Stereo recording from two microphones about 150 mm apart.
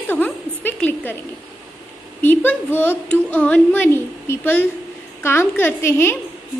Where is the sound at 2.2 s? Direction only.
15° left (ahead or behind).